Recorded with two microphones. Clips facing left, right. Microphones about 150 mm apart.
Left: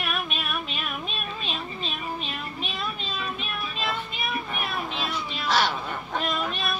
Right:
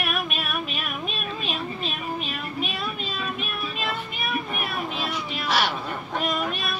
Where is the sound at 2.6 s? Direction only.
10° right (ahead or behind).